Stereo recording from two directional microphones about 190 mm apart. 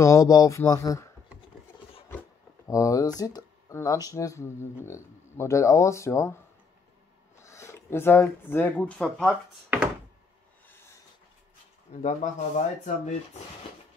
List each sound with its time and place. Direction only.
0.0 s speech: 15° left (ahead or behind)
2.7 s speech: 15° left (ahead or behind)
7.3 s speech: 15° left (ahead or behind)
11.9 s speech: 40° left (ahead or behind)